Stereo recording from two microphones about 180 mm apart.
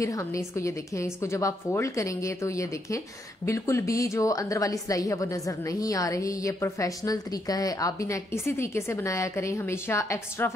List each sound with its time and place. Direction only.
0.0 s speech: 15° left (ahead or behind)